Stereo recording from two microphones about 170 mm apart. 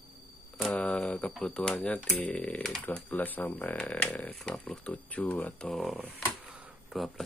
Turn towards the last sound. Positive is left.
turn(degrees=0)  # may be behind; listen again after turning